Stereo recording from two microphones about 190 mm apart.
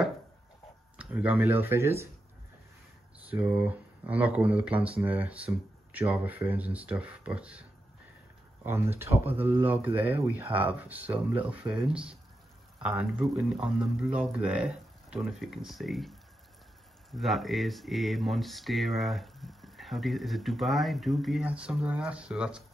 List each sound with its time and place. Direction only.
0.9 s speech: 5° right (ahead or behind)
3.3 s speech: 10° right (ahead or behind)
8.6 s speech: 10° right (ahead or behind)